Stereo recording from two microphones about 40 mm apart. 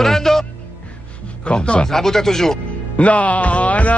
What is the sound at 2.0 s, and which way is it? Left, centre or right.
Speech, centre.